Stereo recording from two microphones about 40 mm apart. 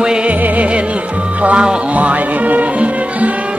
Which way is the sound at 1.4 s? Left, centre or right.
Right.